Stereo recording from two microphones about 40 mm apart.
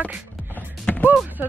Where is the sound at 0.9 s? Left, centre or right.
Left.